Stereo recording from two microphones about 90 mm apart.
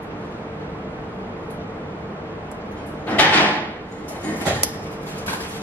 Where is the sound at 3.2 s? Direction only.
15° left (ahead or behind).